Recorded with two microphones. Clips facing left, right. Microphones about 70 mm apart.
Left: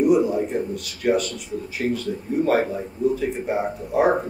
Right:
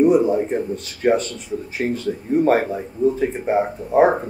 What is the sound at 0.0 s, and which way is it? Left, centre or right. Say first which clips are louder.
Speech: right 3 dB; right.